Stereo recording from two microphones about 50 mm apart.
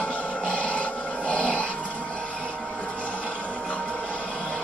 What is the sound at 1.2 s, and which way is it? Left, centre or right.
Dog, left.